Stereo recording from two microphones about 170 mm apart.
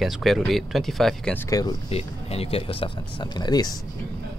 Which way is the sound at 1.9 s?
35° left (ahead or behind).